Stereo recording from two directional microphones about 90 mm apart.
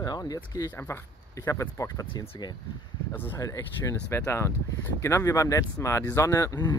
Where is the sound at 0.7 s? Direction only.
25° left (ahead or behind).